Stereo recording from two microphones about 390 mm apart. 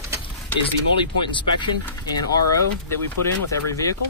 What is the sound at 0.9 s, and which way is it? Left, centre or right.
Speech, centre.